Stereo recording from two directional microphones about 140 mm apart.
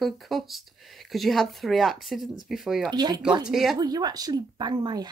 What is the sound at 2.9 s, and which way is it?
Speech, 30° right (ahead or behind).